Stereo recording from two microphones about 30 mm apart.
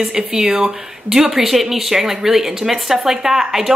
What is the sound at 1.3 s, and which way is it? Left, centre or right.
A woman's voice, centre.